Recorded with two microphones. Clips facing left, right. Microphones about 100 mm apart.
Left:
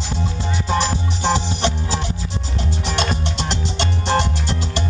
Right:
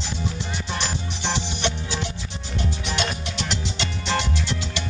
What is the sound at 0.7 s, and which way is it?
Music, 40° left (ahead or behind).